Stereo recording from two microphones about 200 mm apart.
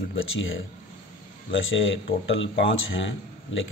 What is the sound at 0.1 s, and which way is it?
Speech, 70° left (ahead or behind).